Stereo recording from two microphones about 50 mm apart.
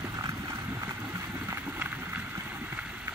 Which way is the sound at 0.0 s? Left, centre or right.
Right.